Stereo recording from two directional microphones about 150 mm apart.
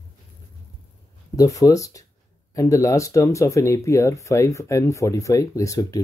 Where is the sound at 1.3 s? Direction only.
25° left (ahead or behind).